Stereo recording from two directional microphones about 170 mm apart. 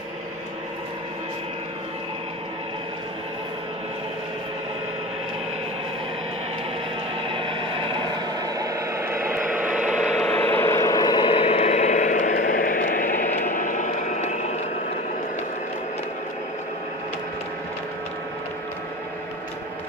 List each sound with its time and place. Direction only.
7.2 s vehicle: 30° right (ahead or behind); by 9.9 s 5° right (ahead or behind)
10.1 s vehicle: 5° left (ahead or behind); by 14.4 s 45° left (ahead or behind)